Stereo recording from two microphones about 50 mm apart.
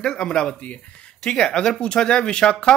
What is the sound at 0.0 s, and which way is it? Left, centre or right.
Speech, centre.